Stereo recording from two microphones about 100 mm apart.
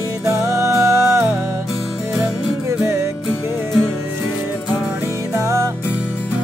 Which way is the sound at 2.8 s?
25° right (ahead or behind).